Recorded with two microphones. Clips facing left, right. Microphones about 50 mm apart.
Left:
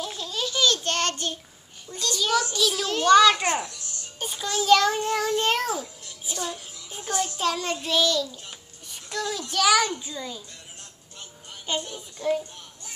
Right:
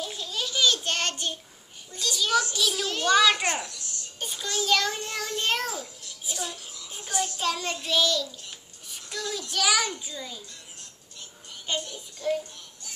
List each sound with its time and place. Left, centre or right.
0.0 s babbling: centre
1.9 s a child's voice: centre
8.8 s a sound: centre
9.5 s a child's voice: centre
11.8 s child singing: left